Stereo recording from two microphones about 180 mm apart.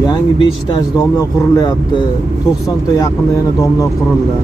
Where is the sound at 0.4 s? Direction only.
20° left (ahead or behind).